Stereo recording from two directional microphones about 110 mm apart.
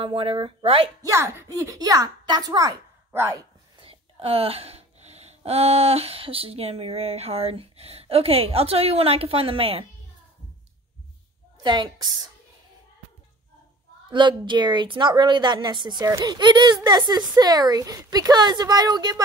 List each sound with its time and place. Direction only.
0.0 s speech: 55° right (ahead or behind)
1.0 s speech: 25° right (ahead or behind)
3.1 s speech: 20° right (ahead or behind)
3.8 s speech: 60° right (ahead or behind)
11.6 s speech: 40° right (ahead or behind)
14.1 s a woman's voice: 45° right (ahead or behind)